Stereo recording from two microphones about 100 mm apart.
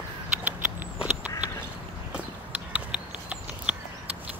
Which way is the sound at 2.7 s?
15° right (ahead or behind).